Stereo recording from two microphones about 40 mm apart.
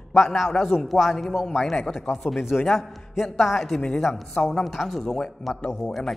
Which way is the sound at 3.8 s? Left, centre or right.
Centre.